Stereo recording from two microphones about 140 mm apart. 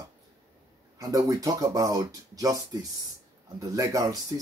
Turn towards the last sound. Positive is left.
turn(degrees=-25)  # may be behind; listen again after turning